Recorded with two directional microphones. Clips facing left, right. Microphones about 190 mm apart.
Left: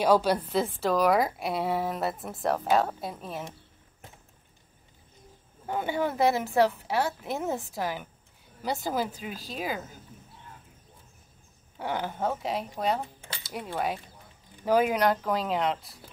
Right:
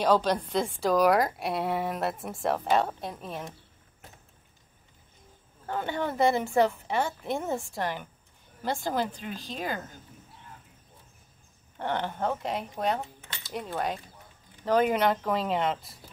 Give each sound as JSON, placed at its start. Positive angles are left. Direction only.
{"t": 0.0, "sound": "a woman's voice", "side_deg": 10}
{"t": 5.7, "sound": "a woman's voice", "side_deg": 10}
{"t": 11.8, "sound": "a woman's voice", "side_deg": 5}